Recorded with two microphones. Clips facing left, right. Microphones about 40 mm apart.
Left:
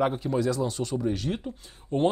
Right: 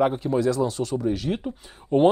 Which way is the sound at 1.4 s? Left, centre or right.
Right.